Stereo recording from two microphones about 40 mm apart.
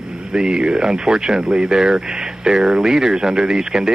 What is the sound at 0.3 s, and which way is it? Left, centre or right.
Speech, right.